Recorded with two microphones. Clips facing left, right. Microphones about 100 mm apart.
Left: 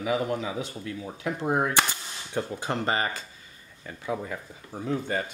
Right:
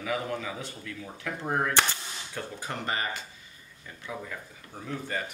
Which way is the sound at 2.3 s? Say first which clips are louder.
Left 7 dB; 30° left (ahead or behind).